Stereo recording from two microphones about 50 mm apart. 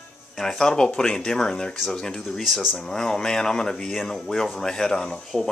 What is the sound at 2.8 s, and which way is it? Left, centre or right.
Speech, centre.